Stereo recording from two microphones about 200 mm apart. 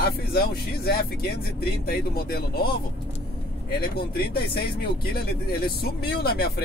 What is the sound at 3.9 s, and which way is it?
Speech, 50° left (ahead or behind).